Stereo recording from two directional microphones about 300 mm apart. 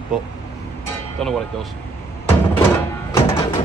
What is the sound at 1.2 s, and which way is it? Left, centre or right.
Speech, centre.